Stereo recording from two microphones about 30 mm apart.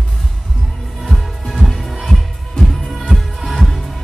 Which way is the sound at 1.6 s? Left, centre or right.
Centre.